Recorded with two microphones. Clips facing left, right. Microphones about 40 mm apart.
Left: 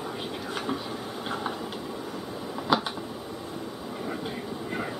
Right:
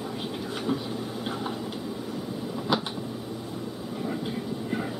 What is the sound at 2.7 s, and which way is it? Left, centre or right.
Finger snapping, centre.